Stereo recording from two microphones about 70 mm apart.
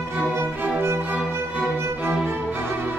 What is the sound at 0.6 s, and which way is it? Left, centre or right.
Music, right.